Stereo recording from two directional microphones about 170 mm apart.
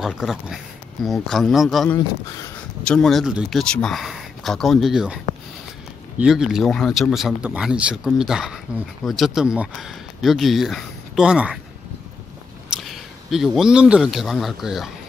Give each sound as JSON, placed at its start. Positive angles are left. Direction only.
{"t": 0.0, "sound": "speech", "side_deg": 0}
{"t": 2.0, "sound": "speech", "side_deg": 20}
{"t": 2.8, "sound": "speech", "side_deg": 5}
{"t": 12.9, "sound": "speech", "side_deg": 0}